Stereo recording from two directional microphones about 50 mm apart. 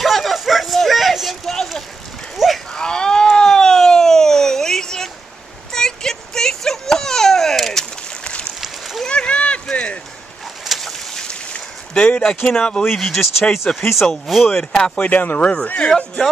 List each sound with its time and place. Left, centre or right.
0.0 s a sound: centre
2.3 s cattle: centre
2.7 s a sound: centre
8.2 s a sound: centre
8.5 s a sound: centre
9.0 s rowboat: left
10.6 s boat: centre
10.9 s boat: centre
12.4 s speech: centre
14.6 s speech: centre
15.0 s speech: left
15.4 s speech: left